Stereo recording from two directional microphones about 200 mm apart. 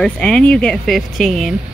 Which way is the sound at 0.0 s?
5° left (ahead or behind).